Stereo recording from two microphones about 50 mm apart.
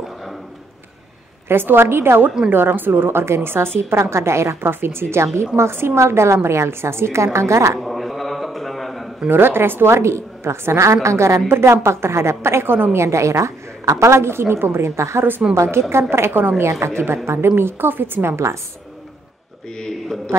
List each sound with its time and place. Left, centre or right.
1.5 s a woman's voice: right
2.5 s a woman's voice: right
4.0 s a woman's voice: right
4.6 s a woman's voice: right
5.9 s a woman's voice: right
7.3 s a woman's voice: right
7.8 s a sound: centre
9.3 s a woman's voice: right
15.9 s a woman's voice: right
16.8 s a woman's voice: right
19.8 s a man's voice: centre